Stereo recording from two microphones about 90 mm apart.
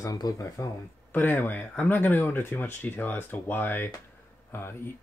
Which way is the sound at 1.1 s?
20° left (ahead or behind).